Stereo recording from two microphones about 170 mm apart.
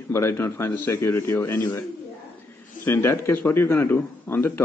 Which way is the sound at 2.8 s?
15° left (ahead or behind).